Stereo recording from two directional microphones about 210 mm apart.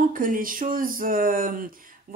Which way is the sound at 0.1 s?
40° right (ahead or behind).